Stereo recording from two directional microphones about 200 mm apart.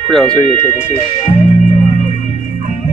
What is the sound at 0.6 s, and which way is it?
Speech, 35° left (ahead or behind).